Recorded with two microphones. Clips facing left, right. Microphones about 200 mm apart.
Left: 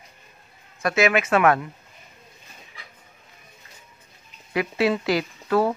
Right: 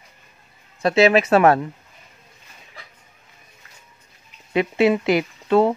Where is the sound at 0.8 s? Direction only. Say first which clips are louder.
Right 5 dB; 30° right (ahead or behind).